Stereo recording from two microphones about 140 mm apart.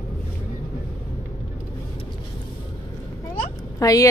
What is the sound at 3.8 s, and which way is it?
Speech, 25° left (ahead or behind).